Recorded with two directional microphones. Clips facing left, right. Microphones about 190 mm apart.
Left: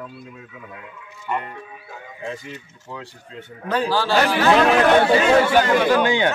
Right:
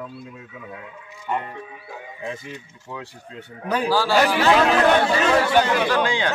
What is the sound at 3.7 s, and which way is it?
Speech, 10° right (ahead or behind).